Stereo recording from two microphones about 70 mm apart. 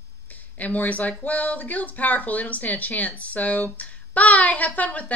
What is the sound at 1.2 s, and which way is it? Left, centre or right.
Speech, left.